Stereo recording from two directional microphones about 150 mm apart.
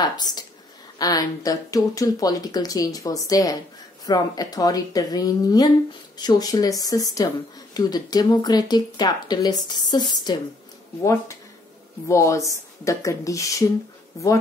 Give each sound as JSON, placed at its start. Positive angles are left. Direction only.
{"t": 0.0, "sound": "speech", "side_deg": 25}
{"t": 12.1, "sound": "speech", "side_deg": 20}